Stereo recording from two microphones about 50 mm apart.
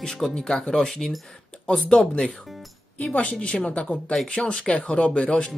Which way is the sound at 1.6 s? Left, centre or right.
Left.